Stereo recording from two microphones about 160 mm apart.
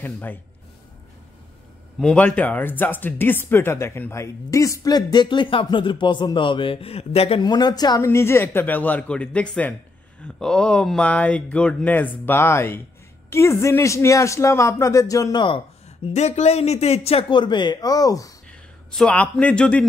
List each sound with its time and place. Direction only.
0.0 s speech: 10° left (ahead or behind)
2.0 s a man's voice: 5° left (ahead or behind); by 18.3 s 20° left (ahead or behind)
18.5 s a man's voice: 5° left (ahead or behind)